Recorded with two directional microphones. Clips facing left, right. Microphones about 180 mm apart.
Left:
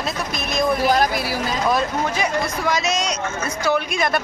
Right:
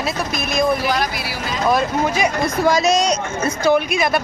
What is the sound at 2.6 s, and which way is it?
Speech, 35° right (ahead or behind).